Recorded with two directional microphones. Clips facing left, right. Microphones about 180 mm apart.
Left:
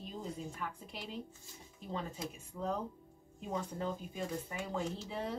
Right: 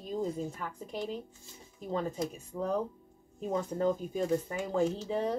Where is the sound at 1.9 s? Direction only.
45° right (ahead or behind).